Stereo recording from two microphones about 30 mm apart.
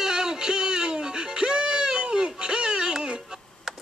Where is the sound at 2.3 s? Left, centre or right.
Right.